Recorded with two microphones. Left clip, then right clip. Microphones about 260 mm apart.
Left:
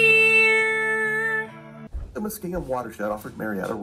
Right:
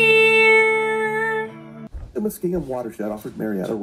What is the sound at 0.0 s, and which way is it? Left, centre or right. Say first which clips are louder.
Music: right 2 dB; centre.